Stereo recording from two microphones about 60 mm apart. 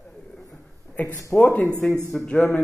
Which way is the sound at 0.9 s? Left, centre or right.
Left.